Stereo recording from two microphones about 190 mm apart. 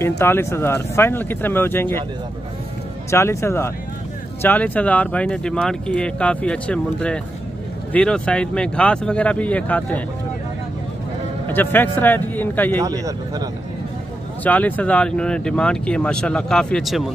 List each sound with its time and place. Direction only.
0.2 s speech: 15° left (ahead or behind)
3.1 s speech: 15° left (ahead or behind)
11.4 s speech: 10° left (ahead or behind)
12.8 s speech: 20° right (ahead or behind)
14.4 s speech: 10° left (ahead or behind)